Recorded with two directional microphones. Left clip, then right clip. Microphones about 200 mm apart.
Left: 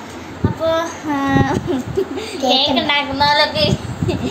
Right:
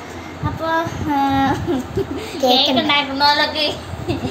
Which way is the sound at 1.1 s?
5° left (ahead or behind).